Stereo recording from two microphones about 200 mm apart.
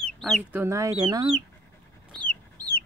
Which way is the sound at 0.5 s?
15° right (ahead or behind).